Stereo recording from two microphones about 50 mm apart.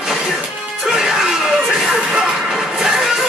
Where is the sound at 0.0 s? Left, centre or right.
Centre.